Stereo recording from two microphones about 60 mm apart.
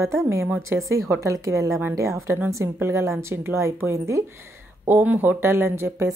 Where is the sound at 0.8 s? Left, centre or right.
Right.